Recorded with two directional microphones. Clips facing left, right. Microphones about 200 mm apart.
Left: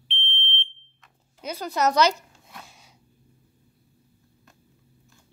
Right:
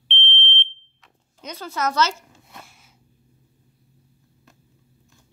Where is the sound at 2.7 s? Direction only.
15° left (ahead or behind).